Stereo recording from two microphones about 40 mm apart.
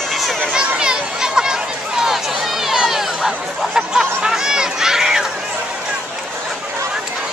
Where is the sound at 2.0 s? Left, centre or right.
Centre.